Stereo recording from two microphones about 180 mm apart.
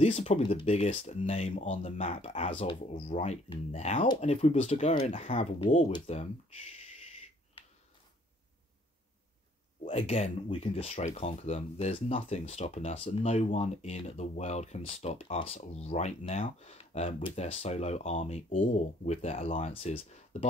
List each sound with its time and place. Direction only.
0.0 s speech: 35° left (ahead or behind)
9.8 s speech: 35° left (ahead or behind)